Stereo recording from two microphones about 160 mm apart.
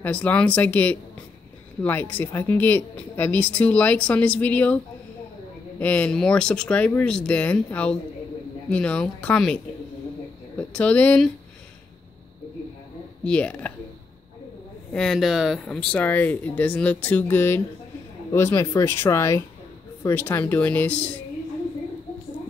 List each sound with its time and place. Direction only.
0.0 s a woman's voice: 10° left (ahead or behind)
5.8 s a woman's voice: 10° left (ahead or behind)
10.7 s a woman's voice: 5° left (ahead or behind)
13.2 s a woman's voice: 5° left (ahead or behind)
14.9 s a woman's voice: 5° left (ahead or behind)